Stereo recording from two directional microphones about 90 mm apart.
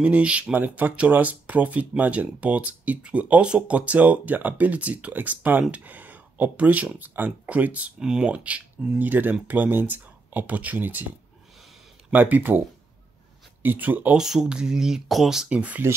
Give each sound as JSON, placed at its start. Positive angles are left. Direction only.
{"t": 0.0, "sound": "speech", "side_deg": -15}
{"t": 14.1, "sound": "speech", "side_deg": -5}